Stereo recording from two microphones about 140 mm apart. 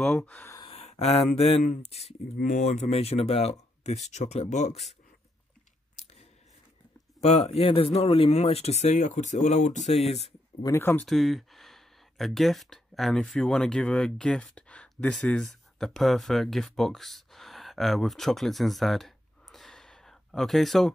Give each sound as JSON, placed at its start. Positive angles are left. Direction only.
{"t": 0.0, "sound": "speech", "side_deg": 5}
{"t": 0.7, "sound": "speech", "side_deg": 50}
{"t": 7.2, "sound": "speech", "side_deg": 45}
{"t": 10.6, "sound": "speech", "side_deg": 20}
{"t": 11.1, "sound": "speech", "side_deg": 0}